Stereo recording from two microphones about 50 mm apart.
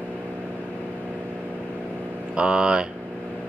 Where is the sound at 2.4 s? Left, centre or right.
Centre.